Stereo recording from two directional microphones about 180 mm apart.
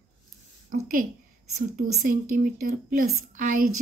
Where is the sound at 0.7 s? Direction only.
50° right (ahead or behind).